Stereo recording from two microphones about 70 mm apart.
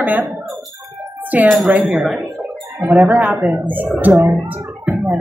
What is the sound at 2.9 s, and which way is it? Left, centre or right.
A woman's voice, right.